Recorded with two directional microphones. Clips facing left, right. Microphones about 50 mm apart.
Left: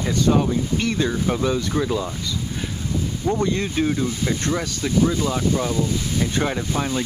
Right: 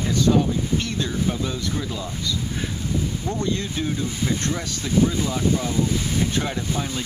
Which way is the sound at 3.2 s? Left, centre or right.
Centre.